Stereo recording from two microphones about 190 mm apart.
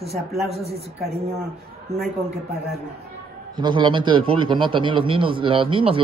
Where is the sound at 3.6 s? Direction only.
25° right (ahead or behind).